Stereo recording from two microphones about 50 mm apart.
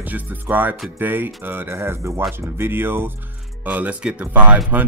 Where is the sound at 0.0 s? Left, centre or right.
Right.